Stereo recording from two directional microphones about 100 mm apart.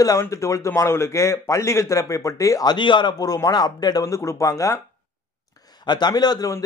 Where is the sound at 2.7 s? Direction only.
50° left (ahead or behind); by 4.7 s 35° left (ahead or behind).